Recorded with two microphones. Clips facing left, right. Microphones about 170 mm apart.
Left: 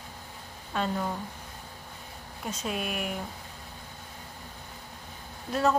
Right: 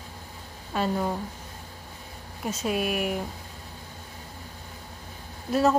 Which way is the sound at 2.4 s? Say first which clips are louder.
Right 6 dB; 5° right (ahead or behind).